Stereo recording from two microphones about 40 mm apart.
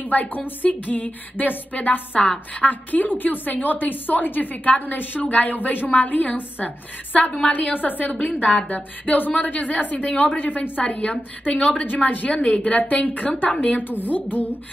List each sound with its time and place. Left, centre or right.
0.0 s a woman's voice: left
11.8 s a woman's voice: left
12.3 s a woman's voice: left
13.8 s a woman's voice: left